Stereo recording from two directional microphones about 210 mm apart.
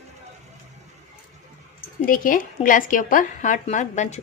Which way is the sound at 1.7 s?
40° left (ahead or behind).